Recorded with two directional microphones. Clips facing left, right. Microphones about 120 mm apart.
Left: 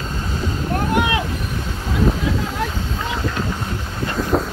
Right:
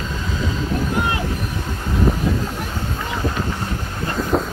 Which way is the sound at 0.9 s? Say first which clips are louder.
Left 6 dB; 85° left.